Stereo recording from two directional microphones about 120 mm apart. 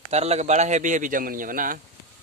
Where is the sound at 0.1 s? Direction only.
65° right (ahead or behind); by 1.1 s 90° right.